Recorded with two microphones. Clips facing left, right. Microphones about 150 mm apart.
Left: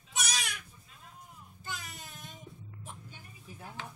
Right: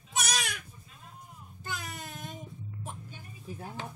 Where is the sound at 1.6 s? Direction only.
60° right (ahead or behind).